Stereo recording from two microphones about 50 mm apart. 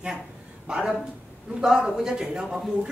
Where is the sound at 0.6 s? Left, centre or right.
Centre.